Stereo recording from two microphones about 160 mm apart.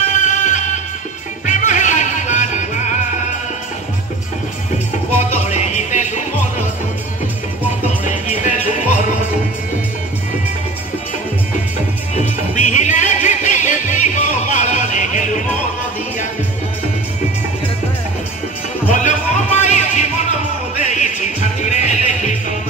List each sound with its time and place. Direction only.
0.1 s music: 50° left (ahead or behind)
5.3 s music: 45° left (ahead or behind)
8.0 s music: 50° left (ahead or behind)
12.2 s music: 50° left (ahead or behind)
18.9 s a sound: 50° left (ahead or behind)
20.7 s music: 45° left (ahead or behind)